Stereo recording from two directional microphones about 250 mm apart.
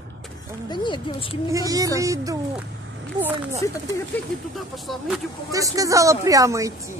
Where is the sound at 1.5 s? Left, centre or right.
Centre.